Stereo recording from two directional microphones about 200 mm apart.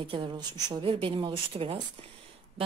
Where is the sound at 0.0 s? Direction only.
25° right (ahead or behind).